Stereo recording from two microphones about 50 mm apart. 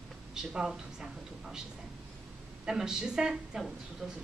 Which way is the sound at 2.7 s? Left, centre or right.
Centre.